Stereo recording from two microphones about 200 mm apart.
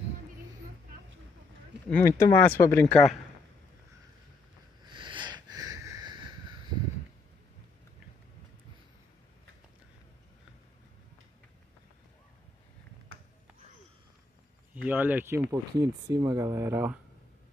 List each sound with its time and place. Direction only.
1.9 s speech: 5° left (ahead or behind)
4.8 s a sound: 25° right (ahead or behind)
14.7 s speech: 10° right (ahead or behind)